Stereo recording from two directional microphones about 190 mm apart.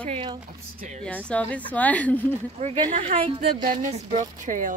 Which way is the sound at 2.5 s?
35° right (ahead or behind).